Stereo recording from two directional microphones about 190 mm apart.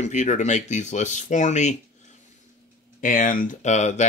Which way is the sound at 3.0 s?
45° left (ahead or behind).